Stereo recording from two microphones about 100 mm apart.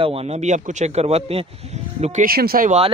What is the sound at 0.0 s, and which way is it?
Speech, 75° right (ahead or behind).